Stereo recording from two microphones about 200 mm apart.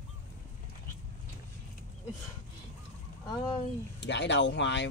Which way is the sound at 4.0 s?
60° left (ahead or behind).